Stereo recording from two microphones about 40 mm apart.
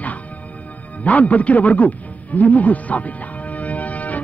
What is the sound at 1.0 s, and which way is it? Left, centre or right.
A man's voice, left.